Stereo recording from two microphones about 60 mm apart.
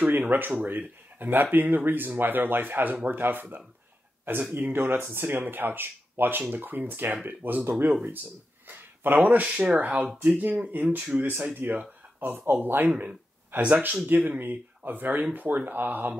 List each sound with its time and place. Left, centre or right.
0.3 s speech: right
8.6 s a sound: right
9.4 s speech: right